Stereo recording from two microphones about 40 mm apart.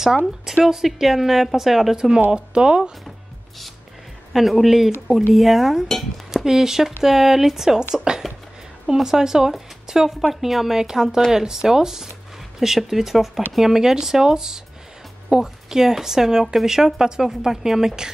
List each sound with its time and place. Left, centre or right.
0.7 s a woman's voice: centre
2.0 s speech: centre
4.3 s a woman's voice: centre
9.8 s music: centre
10.4 s a woman's voice: centre